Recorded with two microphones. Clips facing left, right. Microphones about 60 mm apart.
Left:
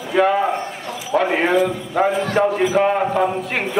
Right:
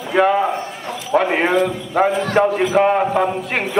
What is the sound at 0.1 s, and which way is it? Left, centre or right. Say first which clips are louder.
A man's voice: right 1 dB; right.